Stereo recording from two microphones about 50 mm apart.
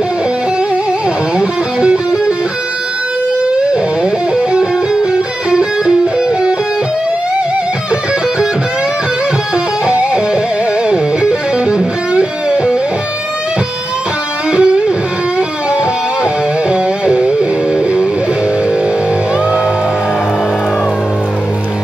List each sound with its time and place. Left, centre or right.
1.4 s music: centre
3.7 s music: centre
9.8 s music: centre
14.5 s music: centre
16.7 s music: centre